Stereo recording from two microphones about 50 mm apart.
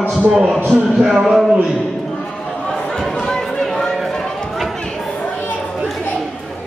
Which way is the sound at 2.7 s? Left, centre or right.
Centre.